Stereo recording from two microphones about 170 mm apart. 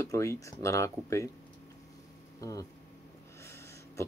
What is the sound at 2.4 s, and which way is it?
Speech, 20° left (ahead or behind).